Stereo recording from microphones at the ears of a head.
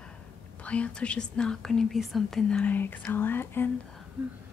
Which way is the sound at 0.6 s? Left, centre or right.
Left.